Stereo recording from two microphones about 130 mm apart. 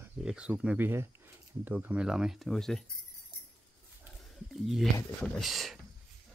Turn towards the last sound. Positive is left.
turn(degrees=0)  # may be behind; listen again after turning